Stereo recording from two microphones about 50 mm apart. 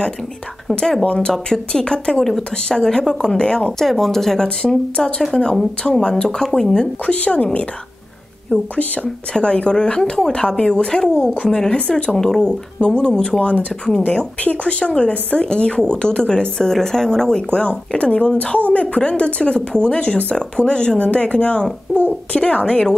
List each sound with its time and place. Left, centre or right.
1.0 s speech: left
3.8 s speech: centre
7.2 s speech: left
8.7 s speech: left
9.3 s speech: centre